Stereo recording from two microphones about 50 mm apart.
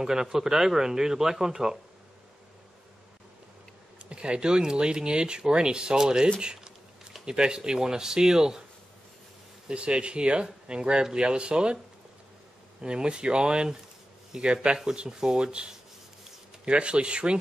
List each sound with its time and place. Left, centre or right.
0.0 s speech: centre
4.1 s speech: centre
6.4 s a sound: centre
7.2 s speech: centre
9.7 s speech: centre
12.8 s speech: centre